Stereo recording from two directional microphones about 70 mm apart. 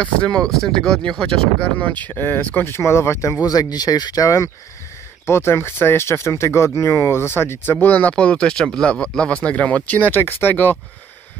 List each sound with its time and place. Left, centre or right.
0.0 s speech: centre
1.8 s speech: left
3.4 s speech: left
5.2 s speech: left